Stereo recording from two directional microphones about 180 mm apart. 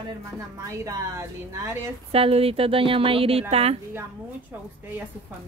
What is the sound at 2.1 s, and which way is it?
A woman's voice, 35° right (ahead or behind).